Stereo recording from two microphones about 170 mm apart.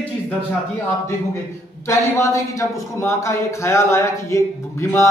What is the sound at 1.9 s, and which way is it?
Speech, 15° left (ahead or behind).